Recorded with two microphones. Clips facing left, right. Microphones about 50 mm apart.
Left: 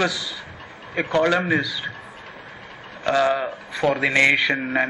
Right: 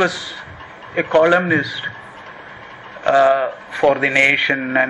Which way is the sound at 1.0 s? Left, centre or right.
Right.